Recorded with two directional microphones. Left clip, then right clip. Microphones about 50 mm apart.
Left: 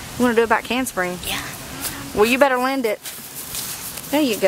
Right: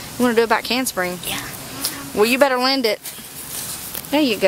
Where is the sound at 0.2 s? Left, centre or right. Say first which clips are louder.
Even; centre.